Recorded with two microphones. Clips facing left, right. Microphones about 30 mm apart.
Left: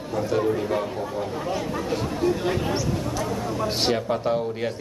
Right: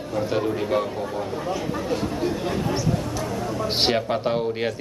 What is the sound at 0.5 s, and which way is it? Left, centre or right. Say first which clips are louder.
Speech: right 2 dB; centre.